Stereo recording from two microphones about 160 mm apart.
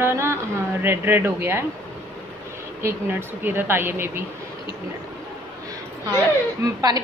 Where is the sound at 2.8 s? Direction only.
15° right (ahead or behind).